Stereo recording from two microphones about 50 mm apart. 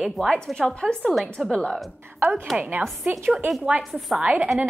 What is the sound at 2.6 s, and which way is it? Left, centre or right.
Speech, right.